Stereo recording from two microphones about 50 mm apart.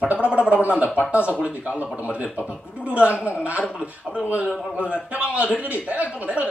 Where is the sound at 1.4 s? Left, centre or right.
Right.